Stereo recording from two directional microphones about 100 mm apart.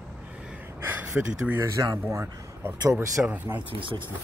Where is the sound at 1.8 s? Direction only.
35° right (ahead or behind).